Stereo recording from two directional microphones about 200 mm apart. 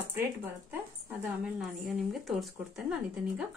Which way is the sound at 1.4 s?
Centre (ahead or behind).